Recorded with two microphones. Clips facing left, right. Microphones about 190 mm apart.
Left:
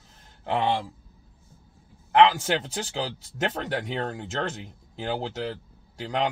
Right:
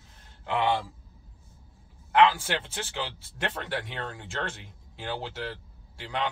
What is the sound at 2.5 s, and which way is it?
A man's voice, 40° left (ahead or behind).